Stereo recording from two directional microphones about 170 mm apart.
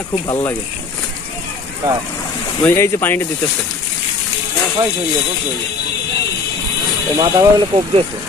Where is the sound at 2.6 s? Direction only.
15° left (ahead or behind).